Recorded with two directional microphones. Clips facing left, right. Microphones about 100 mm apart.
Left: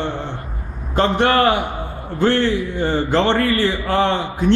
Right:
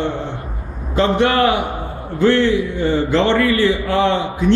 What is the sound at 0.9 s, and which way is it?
A man's voice, 45° left (ahead or behind).